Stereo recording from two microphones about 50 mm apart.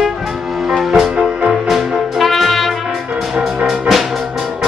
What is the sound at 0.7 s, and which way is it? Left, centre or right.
Music, centre.